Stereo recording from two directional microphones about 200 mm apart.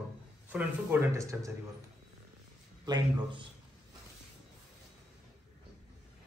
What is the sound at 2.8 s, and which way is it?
Speech, 20° right (ahead or behind).